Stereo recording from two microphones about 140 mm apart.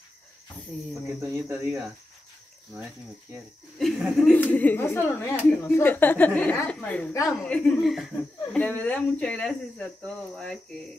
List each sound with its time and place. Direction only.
1.2 s speech: 15° right (ahead or behind)
3.7 s speech: centre (ahead or behind)
4.4 s a woman's voice: 10° left (ahead or behind)
8.5 s a woman's voice: 10° left (ahead or behind)